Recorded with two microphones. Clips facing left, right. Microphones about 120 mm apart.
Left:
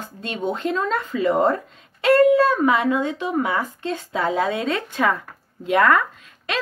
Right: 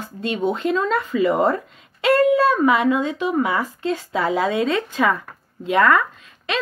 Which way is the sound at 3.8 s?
35° left (ahead or behind).